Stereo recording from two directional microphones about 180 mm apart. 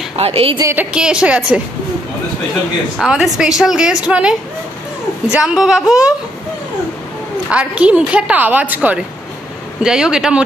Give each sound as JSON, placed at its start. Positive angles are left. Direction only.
{"t": 0.2, "sound": "a woman's voice", "side_deg": -30}
{"t": 0.6, "sound": "a woman's voice", "side_deg": -15}
{"t": 0.9, "sound": "a woman's voice", "side_deg": -5}
{"t": 3.0, "sound": "a woman's voice", "side_deg": 0}
{"t": 7.5, "sound": "a woman's voice", "side_deg": -5}